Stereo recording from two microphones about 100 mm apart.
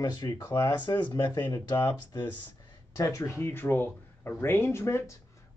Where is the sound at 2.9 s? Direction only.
30° left (ahead or behind).